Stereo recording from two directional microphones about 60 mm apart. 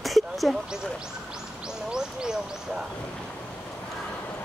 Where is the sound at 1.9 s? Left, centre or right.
Centre.